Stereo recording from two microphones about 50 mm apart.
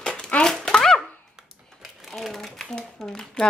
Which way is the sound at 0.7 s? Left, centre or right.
Centre.